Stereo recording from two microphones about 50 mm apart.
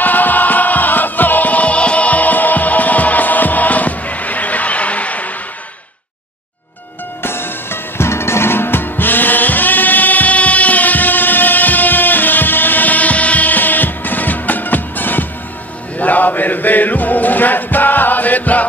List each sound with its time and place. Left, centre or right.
0.0 s music: left
7.2 s music: left